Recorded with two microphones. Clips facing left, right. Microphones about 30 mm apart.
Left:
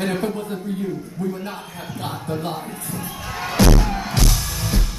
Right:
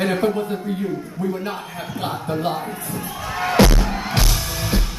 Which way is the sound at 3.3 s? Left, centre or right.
Centre.